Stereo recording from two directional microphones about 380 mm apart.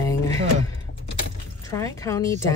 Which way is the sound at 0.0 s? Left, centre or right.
Centre.